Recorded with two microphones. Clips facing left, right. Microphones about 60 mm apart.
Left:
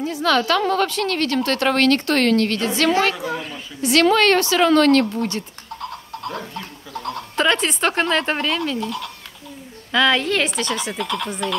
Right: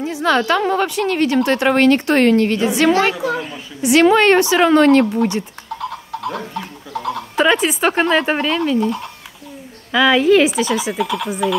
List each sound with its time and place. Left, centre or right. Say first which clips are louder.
0.0 s a sound: right 2 dB; right
0.4 s a woman's voice: right 2 dB; right
3.3 s speech: right 4 dB; centre
3.8 s a woman's voice: right 4 dB; centre
7.0 s speech: right 4 dB; centre
8.7 s speech: right 7 dB; right
9.9 s speech: right 6 dB; centre